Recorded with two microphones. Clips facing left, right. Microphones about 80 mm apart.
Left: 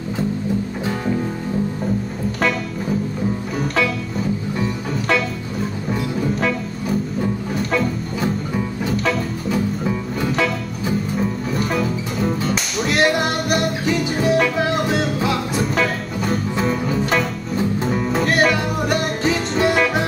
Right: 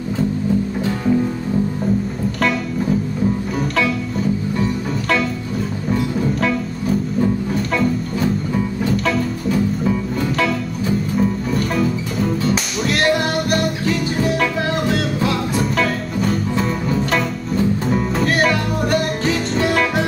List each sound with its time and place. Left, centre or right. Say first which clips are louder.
7.5 s music: right 2 dB; centre
11.1 s music: right 3 dB; centre
13.5 s music: even; left
15.6 s music: right 1 dB; centre
18.5 s music: right 1 dB; centre